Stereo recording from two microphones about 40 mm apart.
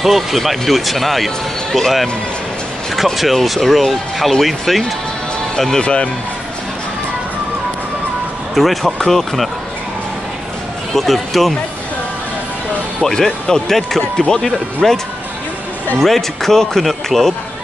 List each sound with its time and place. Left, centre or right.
0.0 s speech: centre
3.2 s speech: centre
5.8 s speech: left
8.5 s speech: centre
11.0 s speech: centre
13.0 s speech: centre
16.0 s speech: centre